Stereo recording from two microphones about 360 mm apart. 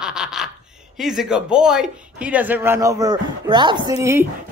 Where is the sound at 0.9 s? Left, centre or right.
Centre.